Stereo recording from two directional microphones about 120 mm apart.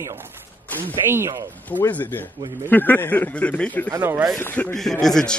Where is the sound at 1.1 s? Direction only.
20° right (ahead or behind).